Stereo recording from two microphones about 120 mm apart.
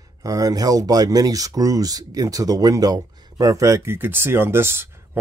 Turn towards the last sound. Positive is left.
turn(degrees=-20)  # may be behind; listen again after turning